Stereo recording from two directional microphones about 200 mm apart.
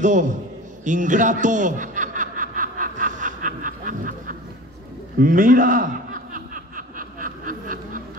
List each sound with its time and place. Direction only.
0.0 s a man's voice: 40° right (ahead or behind)
0.8 s chuckle: 40° right (ahead or behind)
5.2 s a man's voice: 40° right (ahead or behind)
6.3 s snicker: 40° right (ahead or behind)